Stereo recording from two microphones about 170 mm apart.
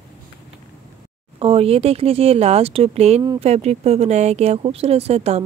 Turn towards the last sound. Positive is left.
turn(degrees=-40)  # may be behind; listen again after turning